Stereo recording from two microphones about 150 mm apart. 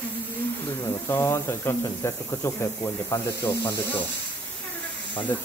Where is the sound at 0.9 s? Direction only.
15° left (ahead or behind).